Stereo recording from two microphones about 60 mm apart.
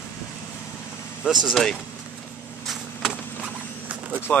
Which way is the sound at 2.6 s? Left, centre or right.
Centre.